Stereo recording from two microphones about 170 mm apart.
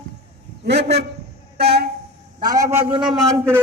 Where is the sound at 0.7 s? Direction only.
80° right.